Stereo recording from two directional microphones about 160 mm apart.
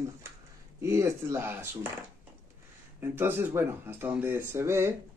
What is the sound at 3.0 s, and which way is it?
Speech, 15° right (ahead or behind).